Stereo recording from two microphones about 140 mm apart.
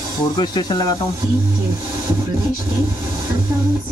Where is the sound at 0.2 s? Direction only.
30° left (ahead or behind).